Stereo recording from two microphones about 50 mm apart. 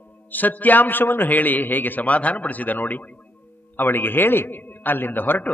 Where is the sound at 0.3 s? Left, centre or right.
Left.